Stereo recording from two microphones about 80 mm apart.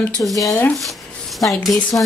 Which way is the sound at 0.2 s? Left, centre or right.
Left.